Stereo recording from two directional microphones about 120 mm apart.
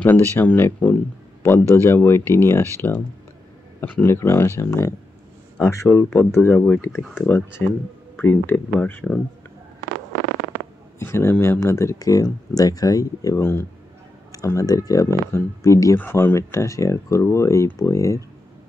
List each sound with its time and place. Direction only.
0.0 s speech: 15° left (ahead or behind)
11.0 s speech: 20° left (ahead or behind)